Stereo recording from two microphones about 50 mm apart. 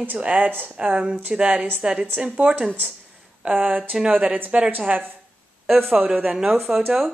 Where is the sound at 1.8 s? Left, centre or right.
Right.